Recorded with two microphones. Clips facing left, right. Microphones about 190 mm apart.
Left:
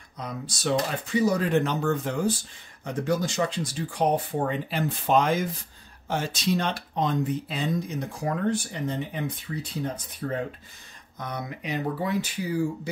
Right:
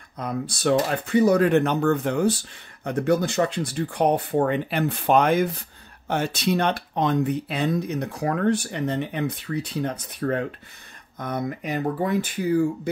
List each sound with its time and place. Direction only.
0.2 s speech: 55° right (ahead or behind)
11.1 s speech: 50° right (ahead or behind)